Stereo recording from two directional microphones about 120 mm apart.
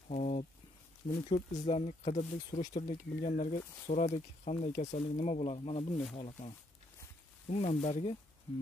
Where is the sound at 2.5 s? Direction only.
85° left.